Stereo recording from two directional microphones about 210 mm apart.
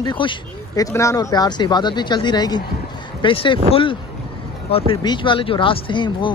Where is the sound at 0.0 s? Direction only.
20° left (ahead or behind).